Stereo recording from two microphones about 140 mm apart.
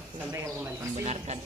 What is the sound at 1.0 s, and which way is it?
Speech, 50° right (ahead or behind).